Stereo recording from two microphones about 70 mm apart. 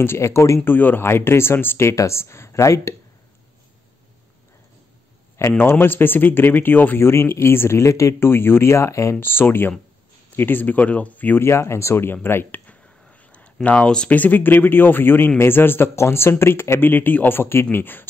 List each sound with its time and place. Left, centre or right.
0.0 s speech: left
0.7 s speech: left
5.6 s speech: left
9.2 s speech: left
11.4 s speech: left